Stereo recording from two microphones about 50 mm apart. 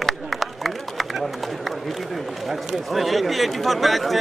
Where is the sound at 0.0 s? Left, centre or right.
Centre.